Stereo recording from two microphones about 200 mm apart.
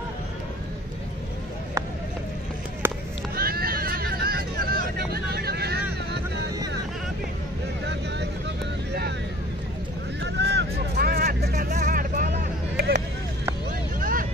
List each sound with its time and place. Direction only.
2.8 s run: 10° right (ahead or behind)
3.3 s hubbub: 50° right (ahead or behind)
7.8 s vehicle: 60° right (ahead or behind)
10.2 s vehicle: 60° right (ahead or behind)
12.7 s vehicle: 55° right (ahead or behind)
13.9 s vehicle: 45° right (ahead or behind)